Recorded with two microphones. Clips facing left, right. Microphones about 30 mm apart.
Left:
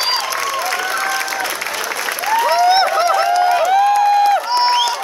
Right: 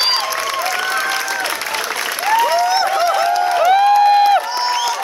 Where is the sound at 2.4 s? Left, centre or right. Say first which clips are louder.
Left 2 dB; left.